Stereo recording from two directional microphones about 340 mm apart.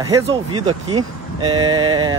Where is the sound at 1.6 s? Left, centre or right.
Centre.